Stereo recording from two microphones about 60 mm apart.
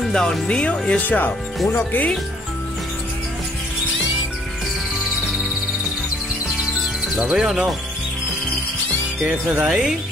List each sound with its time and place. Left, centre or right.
0.1 s speech: centre
1.0 s speech: left
7.2 s speech: centre
9.3 s speech: right